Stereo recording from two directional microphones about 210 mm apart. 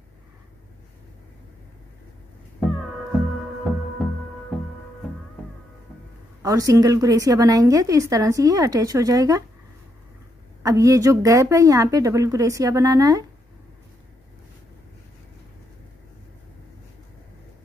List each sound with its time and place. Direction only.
6.4 s a woman's voice: 15° right (ahead or behind)
10.6 s a woman's voice: 15° right (ahead or behind)